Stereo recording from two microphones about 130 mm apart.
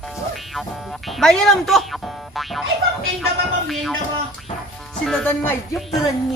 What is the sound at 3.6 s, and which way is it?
Speech, centre (ahead or behind).